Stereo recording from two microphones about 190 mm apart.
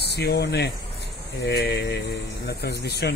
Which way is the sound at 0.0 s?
60° left (ahead or behind).